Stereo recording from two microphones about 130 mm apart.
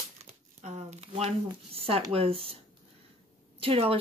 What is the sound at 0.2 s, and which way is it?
Crumpling, 60° right (ahead or behind).